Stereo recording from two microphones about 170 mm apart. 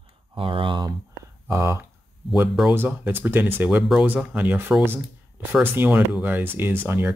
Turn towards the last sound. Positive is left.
turn(degrees=-10)  # may be behind; listen again after turning